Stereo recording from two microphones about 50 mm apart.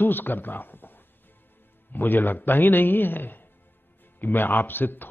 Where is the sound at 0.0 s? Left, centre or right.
Left.